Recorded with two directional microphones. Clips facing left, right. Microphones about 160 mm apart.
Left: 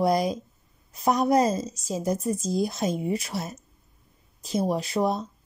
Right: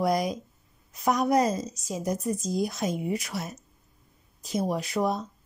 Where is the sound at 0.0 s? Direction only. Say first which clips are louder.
Left 3 dB; 30° left (ahead or behind).